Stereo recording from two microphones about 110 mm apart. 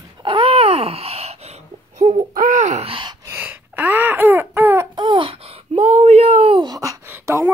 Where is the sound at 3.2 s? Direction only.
20° right (ahead or behind).